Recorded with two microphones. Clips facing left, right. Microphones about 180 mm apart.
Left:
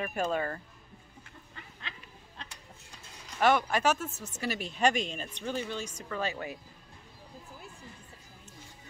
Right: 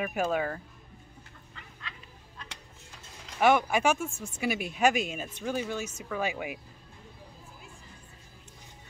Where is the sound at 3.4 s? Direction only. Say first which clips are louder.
Right 2 dB; 10° right (ahead or behind).